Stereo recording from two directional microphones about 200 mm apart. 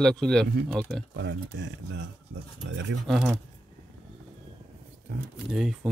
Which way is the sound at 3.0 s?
Centre (ahead or behind).